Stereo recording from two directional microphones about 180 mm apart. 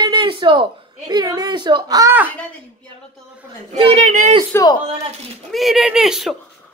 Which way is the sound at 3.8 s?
40° right (ahead or behind).